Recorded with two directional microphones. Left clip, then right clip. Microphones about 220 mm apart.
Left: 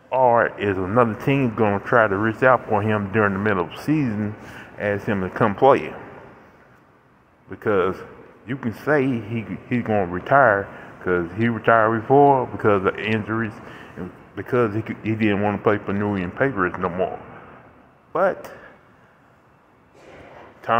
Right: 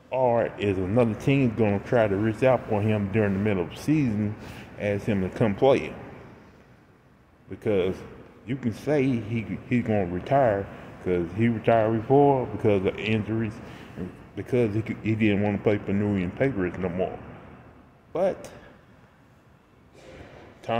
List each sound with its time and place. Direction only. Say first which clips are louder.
0.1 s a sound: left 6 dB; 35° left (ahead or behind)
0.4 s speech: left 5 dB; centre (ahead or behind)
7.5 s speech: left 5 dB; centre (ahead or behind)
12.1 s speech: left 5 dB; 30° left (ahead or behind)
12.5 s speech: left 5 dB; centre (ahead or behind)
15.3 s speech: left 5 dB; 35° left (ahead or behind)
15.6 s speech: left 4 dB; centre (ahead or behind)
18.1 s speech: left 5 dB; centre (ahead or behind)